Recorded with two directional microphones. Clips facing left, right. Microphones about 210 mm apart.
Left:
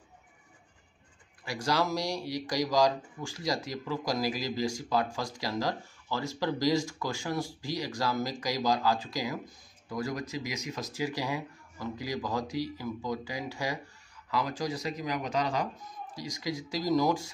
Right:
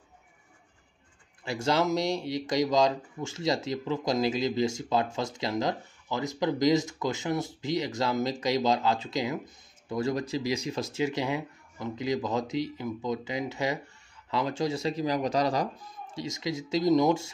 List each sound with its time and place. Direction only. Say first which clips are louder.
1.4 s speech: right 3 dB; 25° right (ahead or behind)
16.2 s speech: right 3 dB; 25° right (ahead or behind)